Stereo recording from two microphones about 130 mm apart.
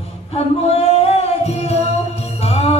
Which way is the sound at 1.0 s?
55° left (ahead or behind).